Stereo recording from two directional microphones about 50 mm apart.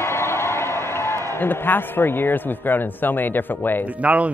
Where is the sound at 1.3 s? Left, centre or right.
Left.